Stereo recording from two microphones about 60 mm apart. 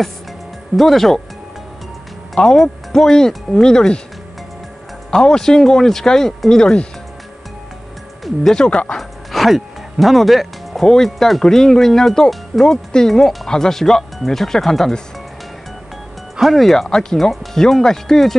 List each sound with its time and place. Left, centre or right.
0.7 s speech: centre
2.3 s speech: centre
5.1 s speech: centre
8.5 s speech: centre
8.9 s speech: centre
16.3 s speech: centre